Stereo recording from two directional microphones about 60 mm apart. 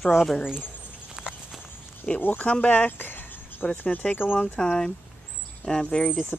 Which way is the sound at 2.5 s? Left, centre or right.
Left.